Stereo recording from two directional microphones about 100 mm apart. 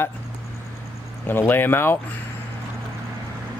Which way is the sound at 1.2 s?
20° left (ahead or behind).